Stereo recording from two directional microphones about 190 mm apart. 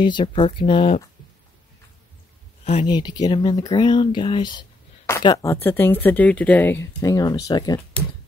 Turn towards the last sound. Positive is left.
turn(degrees=20)  # may be behind; listen again after turning